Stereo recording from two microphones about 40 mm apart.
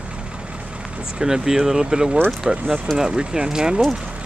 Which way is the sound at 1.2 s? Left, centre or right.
Centre.